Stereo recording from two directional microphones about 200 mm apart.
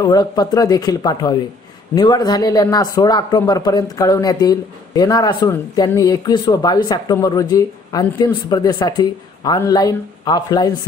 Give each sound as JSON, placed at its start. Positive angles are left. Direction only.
{"t": 0.0, "sound": "speech", "side_deg": 20}